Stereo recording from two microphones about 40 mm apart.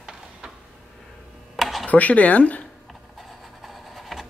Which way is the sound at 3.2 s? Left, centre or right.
Centre.